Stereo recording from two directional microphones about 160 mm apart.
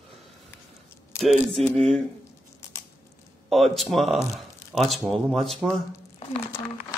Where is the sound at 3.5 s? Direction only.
Centre (ahead or behind).